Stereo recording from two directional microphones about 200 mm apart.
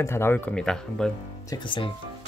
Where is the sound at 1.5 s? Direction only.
25° left (ahead or behind).